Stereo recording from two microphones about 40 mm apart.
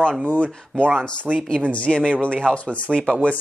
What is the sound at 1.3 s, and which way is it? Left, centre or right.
Speech, right.